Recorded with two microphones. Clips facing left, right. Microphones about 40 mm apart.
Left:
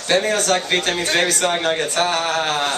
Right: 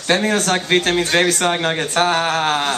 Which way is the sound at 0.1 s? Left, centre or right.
Right.